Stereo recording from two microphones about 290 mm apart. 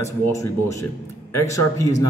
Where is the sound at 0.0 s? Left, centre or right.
Centre.